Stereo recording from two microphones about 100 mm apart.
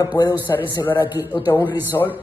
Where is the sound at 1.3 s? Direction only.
20° right (ahead or behind).